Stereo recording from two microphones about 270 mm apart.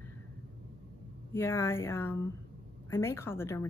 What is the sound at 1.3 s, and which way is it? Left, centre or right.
Speech, centre.